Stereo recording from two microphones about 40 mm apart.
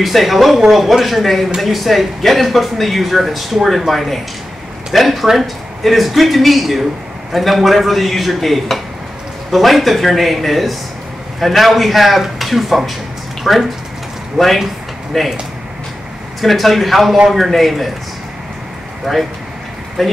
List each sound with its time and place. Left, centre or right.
0.0 s speech: centre
16.3 s speech: centre
19.1 s speech: centre